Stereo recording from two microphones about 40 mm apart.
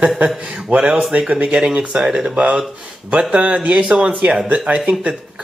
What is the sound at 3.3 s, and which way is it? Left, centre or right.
Speech, right.